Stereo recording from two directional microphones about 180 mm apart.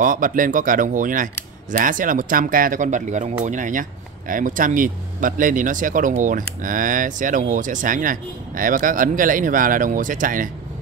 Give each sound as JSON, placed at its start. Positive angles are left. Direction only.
{"t": 0.0, "sound": "speech", "side_deg": -50}